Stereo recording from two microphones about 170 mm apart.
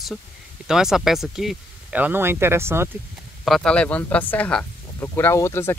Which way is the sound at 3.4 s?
5° left (ahead or behind).